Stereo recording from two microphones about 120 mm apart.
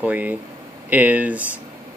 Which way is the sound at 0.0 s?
15° right (ahead or behind).